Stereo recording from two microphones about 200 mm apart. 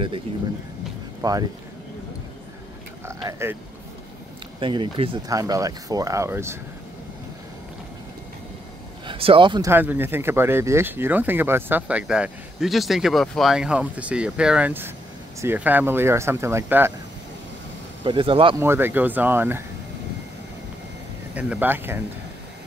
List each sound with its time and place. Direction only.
1.2 s speech: 20° right (ahead or behind)
3.1 s speech: 15° right (ahead or behind)
4.6 s speech: 25° right (ahead or behind)
9.0 s speech: 25° right (ahead or behind)
9.7 s speech: 10° right (ahead or behind)
18.0 s speech: 25° right (ahead or behind)
18.6 s speech: 10° right (ahead or behind)
21.4 s speech: 10° right (ahead or behind)